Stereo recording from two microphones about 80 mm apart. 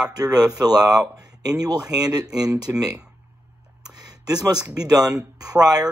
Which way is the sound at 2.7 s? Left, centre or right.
Right.